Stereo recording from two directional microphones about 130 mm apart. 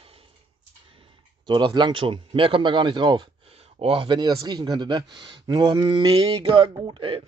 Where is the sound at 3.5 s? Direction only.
55° right (ahead or behind).